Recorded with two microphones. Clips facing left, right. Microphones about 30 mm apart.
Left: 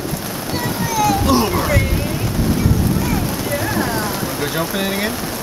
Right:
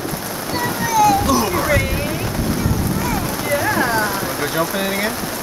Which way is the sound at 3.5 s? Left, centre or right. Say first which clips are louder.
Right 4 dB; centre.